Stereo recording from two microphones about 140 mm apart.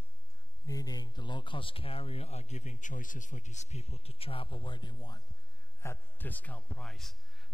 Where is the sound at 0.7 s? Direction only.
25° left (ahead or behind).